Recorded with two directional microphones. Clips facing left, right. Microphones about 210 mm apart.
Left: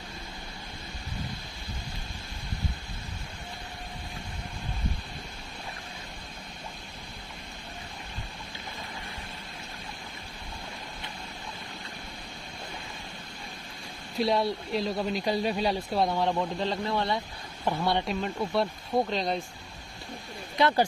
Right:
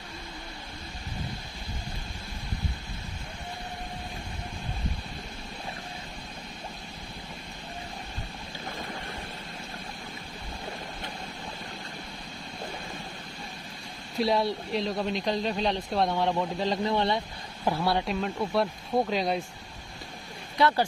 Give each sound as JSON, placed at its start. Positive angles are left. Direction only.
{"t": 14.1, "sound": "speech", "side_deg": 0}
{"t": 16.9, "sound": "speech", "side_deg": -25}
{"t": 17.6, "sound": "speech", "side_deg": -5}
{"t": 20.5, "sound": "speech", "side_deg": 20}